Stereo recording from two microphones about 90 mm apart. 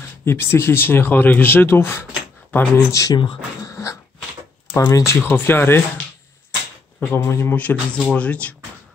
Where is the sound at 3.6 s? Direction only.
35° left (ahead or behind).